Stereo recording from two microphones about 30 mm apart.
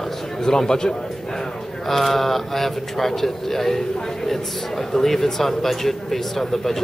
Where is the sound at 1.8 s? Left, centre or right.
Centre.